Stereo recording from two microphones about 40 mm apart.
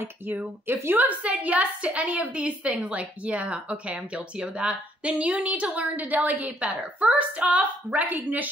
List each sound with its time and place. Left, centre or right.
0.9 s speech: right